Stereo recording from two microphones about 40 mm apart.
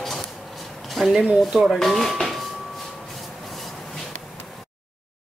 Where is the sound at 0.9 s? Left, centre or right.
Centre.